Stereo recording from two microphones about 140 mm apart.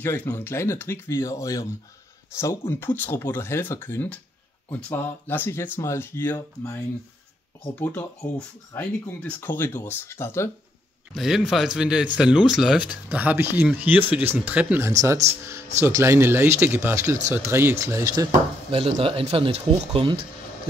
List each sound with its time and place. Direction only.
0.0 s speech: 15° left (ahead or behind)
7.8 s speech: 10° left (ahead or behind)
11.1 s speech: centre (ahead or behind)
14.9 s speech: 25° right (ahead or behind)
18.7 s speech: 45° right (ahead or behind)